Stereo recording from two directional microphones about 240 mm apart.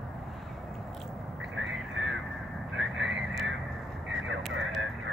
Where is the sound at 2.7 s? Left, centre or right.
Right.